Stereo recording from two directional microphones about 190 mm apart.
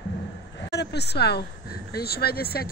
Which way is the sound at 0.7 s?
60° left (ahead or behind).